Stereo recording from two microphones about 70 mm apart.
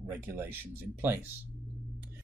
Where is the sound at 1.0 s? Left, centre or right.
Right.